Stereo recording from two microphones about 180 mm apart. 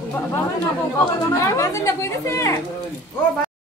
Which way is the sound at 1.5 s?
15° left (ahead or behind).